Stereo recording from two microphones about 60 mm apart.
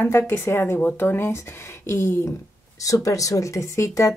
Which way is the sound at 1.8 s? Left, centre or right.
Left.